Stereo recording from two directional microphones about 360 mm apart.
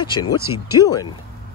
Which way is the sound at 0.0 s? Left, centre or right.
Centre.